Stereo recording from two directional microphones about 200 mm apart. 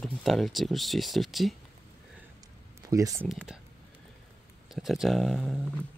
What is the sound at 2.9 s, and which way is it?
Speech, 15° right (ahead or behind).